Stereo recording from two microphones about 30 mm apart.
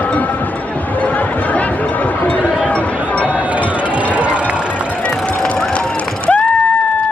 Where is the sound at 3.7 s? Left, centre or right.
Right.